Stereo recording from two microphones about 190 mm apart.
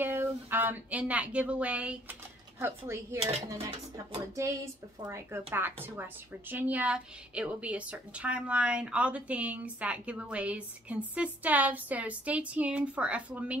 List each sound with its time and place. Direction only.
0.0 s a woman's voice: 10° right (ahead or behind)